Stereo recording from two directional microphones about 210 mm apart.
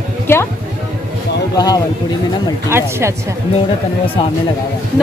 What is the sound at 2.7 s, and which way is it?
Speech, 10° right (ahead or behind).